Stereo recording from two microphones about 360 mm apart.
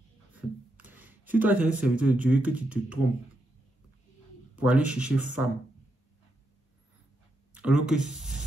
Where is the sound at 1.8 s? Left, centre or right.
Centre.